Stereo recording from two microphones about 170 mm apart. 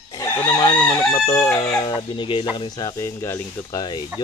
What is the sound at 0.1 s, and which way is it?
Chicken, 25° left (ahead or behind).